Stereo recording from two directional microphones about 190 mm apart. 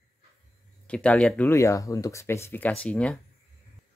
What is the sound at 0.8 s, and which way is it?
Speech, 5° left (ahead or behind).